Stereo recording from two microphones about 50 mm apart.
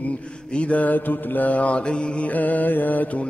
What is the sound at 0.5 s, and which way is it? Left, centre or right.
Mantra, left.